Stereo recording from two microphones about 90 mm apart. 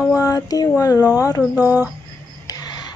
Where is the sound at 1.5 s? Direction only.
20° right (ahead or behind).